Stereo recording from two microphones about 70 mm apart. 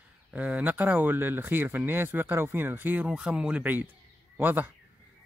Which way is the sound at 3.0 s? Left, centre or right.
Centre.